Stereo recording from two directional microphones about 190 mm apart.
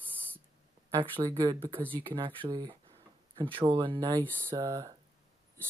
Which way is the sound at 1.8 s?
10° left (ahead or behind).